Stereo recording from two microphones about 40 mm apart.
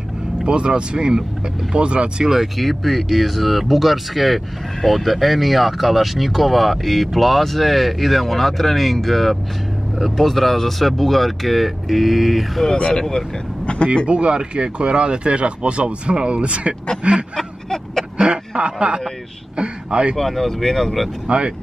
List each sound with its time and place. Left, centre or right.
0.4 s speech: right
2.2 s speech: centre
12.7 s speech: left
14.0 s speech: right
17.4 s vehicle: centre
18.2 s a sound: right
19.5 s speech: right
20.2 s speech: centre
21.3 s speech: right